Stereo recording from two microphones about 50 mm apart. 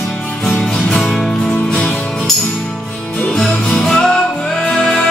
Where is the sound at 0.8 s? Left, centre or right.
Centre.